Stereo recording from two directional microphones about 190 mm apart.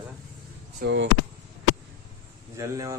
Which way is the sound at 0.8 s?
70° right (ahead or behind).